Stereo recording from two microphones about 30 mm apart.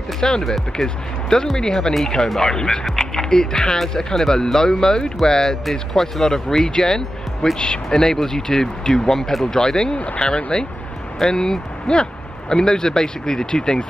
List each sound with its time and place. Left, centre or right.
0.4 s speech: centre
1.6 s speech: left
5.7 s speech: centre
6.2 s speech: centre
7.5 s speech: left
7.9 s speech: left